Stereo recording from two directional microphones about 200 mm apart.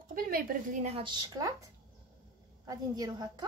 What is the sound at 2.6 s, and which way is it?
Speech, 20° right (ahead or behind).